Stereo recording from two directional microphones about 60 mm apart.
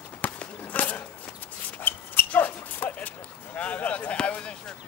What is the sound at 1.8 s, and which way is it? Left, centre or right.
Dog, left.